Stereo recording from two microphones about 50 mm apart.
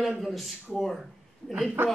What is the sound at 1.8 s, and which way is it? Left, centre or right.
Speech, right.